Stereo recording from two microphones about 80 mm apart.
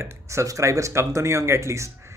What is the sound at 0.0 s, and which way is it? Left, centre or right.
Speech, right.